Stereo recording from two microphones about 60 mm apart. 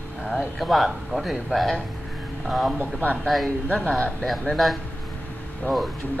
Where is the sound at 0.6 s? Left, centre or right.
Centre.